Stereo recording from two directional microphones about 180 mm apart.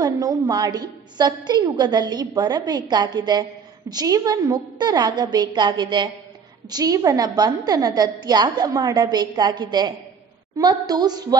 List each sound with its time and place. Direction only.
0.0 s a woman's voice: 20° right (ahead or behind)